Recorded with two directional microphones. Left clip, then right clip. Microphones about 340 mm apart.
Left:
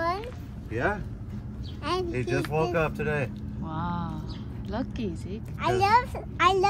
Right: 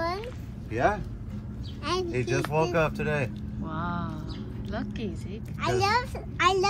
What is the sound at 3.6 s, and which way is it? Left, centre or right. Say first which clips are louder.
A child's voice: even; centre.